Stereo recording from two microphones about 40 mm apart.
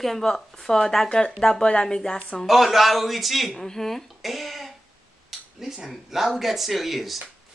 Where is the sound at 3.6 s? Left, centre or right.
Centre.